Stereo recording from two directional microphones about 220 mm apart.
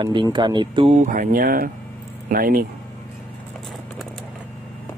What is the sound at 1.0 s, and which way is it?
Speech, 40° right (ahead or behind).